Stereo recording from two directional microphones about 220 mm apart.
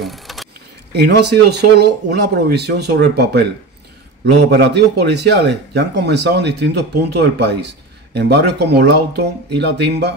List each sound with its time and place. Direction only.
0.0 s a sound: centre (ahead or behind)
1.0 s speech: 50° right (ahead or behind)
4.4 s speech: 50° right (ahead or behind)